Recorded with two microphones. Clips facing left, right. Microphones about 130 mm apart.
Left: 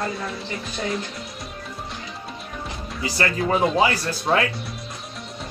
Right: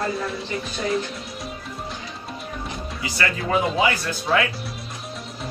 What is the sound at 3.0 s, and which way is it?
Speech, 40° left (ahead or behind).